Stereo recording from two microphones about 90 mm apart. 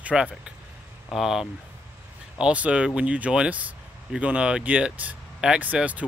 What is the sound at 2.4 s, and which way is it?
Speech, 15° right (ahead or behind).